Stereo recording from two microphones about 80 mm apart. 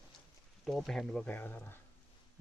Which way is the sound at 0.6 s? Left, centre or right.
Centre.